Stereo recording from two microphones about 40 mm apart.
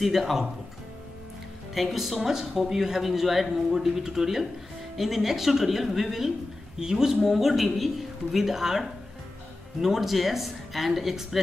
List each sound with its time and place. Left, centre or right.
0.0 s speech: centre
1.7 s a man's voice: centre